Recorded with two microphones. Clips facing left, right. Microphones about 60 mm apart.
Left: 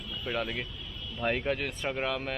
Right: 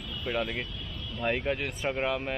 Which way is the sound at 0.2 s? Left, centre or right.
Centre.